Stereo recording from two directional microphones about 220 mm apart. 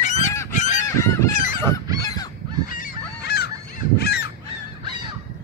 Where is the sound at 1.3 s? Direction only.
35° left (ahead or behind).